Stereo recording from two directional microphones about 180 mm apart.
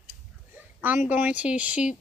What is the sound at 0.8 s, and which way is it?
Speech, 10° right (ahead or behind).